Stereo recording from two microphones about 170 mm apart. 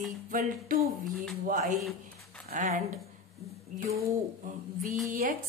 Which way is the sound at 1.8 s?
Centre (ahead or behind).